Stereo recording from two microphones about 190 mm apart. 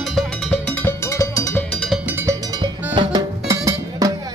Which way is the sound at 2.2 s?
20° right (ahead or behind).